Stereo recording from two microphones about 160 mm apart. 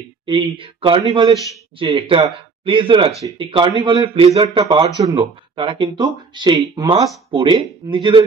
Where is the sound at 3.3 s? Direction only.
30° right (ahead or behind).